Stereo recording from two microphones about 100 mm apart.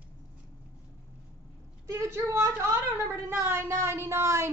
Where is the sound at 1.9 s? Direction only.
25° right (ahead or behind).